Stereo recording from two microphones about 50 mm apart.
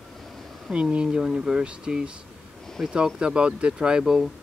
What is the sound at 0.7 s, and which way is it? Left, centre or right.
Speech, centre.